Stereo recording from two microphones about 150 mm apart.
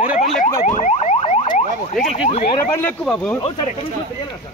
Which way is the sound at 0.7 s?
50° left (ahead or behind).